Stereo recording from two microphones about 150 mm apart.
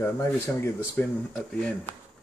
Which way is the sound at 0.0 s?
15° left (ahead or behind).